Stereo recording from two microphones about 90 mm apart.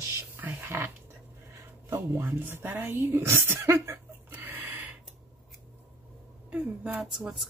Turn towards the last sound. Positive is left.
turn(degrees=-10)  # may be behind; listen again after turning